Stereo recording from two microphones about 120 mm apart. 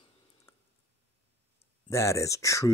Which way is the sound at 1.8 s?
25° left (ahead or behind).